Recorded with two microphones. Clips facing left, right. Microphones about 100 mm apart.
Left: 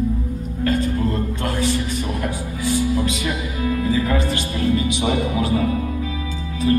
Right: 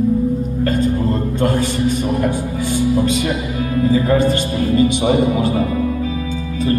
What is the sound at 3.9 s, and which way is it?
Speech, 35° right (ahead or behind).